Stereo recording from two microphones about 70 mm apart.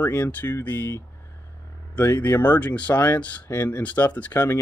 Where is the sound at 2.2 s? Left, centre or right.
Left.